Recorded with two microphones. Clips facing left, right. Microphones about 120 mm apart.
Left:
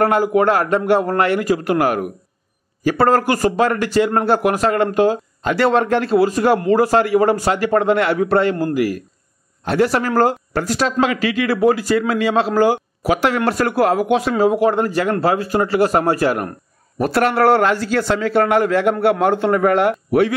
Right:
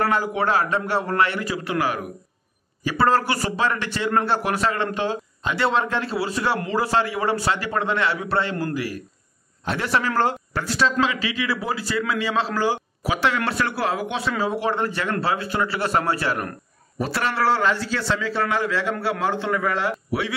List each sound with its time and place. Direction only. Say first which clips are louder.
0.0 s speech: left 7 dB; 45° left (ahead or behind)